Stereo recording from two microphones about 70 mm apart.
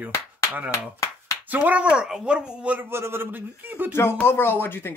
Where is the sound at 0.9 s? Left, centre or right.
Left.